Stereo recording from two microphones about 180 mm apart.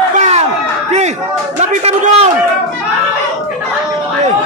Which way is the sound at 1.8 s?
35° right (ahead or behind).